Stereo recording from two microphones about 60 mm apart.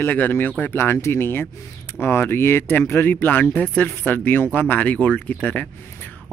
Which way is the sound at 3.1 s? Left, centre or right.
Left.